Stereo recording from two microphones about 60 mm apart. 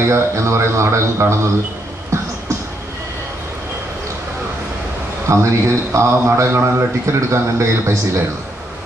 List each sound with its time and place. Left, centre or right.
0.1 s a man's voice: right
5.3 s a man's voice: right